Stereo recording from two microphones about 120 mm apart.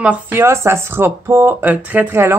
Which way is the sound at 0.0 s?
15° right (ahead or behind).